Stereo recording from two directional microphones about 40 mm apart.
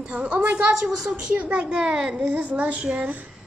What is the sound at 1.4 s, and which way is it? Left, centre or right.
Speech, right.